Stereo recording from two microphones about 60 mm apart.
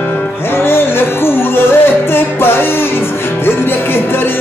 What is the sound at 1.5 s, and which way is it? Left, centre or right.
Music, left.